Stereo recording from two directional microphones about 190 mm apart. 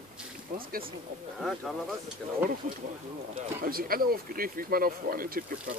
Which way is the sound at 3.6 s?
50° right (ahead or behind).